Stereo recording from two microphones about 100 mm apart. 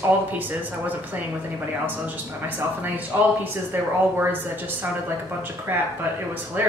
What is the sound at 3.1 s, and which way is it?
Speech, 20° right (ahead or behind).